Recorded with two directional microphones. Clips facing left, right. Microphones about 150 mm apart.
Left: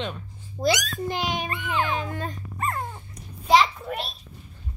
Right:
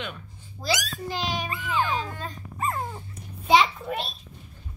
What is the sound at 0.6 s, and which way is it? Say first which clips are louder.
A child's voice: left 5 dB; 55° left (ahead or behind).